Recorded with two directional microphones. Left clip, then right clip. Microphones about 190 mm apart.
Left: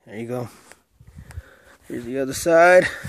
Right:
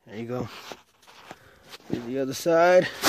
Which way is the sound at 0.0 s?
5° left (ahead or behind).